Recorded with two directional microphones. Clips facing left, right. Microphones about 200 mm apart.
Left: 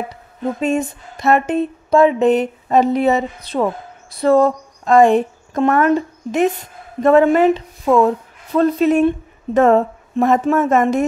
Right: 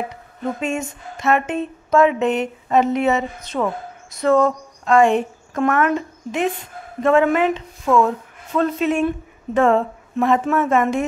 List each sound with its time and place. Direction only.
0.1 s speech: 35° left (ahead or behind)